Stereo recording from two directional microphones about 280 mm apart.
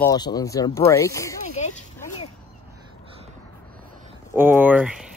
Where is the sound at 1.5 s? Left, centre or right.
Left.